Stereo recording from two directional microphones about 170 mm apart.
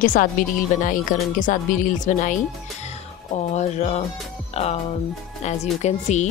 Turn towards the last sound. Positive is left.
turn(degrees=40)  # may be behind; listen again after turning